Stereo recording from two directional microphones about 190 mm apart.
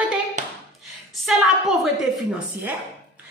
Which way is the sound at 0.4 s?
40° right (ahead or behind).